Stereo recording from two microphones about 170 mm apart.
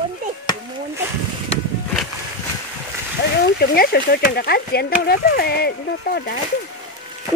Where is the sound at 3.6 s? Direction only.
60° left (ahead or behind).